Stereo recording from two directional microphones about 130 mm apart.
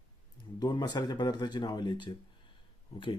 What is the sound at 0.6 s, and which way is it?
Speech, 35° left (ahead or behind).